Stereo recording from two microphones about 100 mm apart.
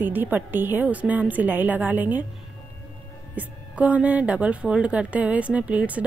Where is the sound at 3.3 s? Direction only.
15° right (ahead or behind).